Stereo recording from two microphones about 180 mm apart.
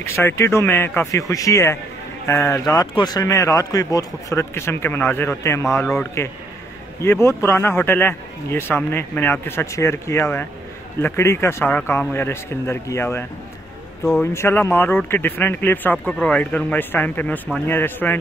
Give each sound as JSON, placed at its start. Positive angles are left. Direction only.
{"t": 0.0, "sound": "speech", "side_deg": 15}
{"t": 5.8, "sound": "a man's voice", "side_deg": 5}
{"t": 7.0, "sound": "speech", "side_deg": 15}
{"t": 14.2, "sound": "speech", "side_deg": 15}